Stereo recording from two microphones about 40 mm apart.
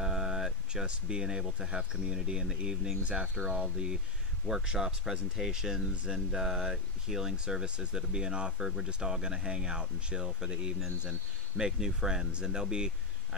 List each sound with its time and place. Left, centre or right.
0.0 s a sound: centre
0.8 s speech: right
2.1 s speech: centre
7.6 s speech: right